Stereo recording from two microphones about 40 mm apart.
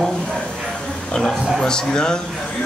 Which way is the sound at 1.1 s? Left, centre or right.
Centre.